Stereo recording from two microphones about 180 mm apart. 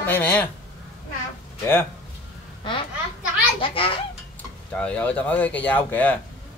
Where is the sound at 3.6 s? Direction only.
30° left (ahead or behind).